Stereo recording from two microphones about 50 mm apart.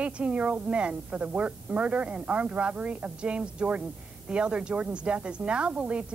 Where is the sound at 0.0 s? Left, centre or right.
Right.